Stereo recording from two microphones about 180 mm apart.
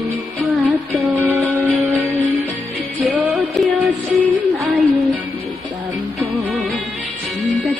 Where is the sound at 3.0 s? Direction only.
5° right (ahead or behind).